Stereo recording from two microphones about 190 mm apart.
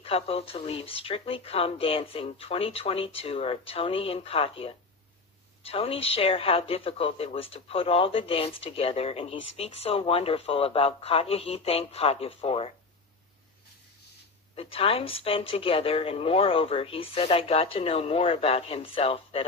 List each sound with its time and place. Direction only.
0.0 s speech: 30° left (ahead or behind)
14.5 s a woman's voice: 30° left (ahead or behind)